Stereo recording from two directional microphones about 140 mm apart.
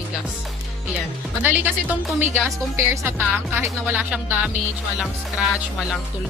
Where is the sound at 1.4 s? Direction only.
10° right (ahead or behind).